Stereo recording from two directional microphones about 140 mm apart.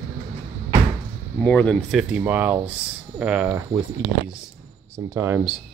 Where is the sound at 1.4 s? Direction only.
10° left (ahead or behind).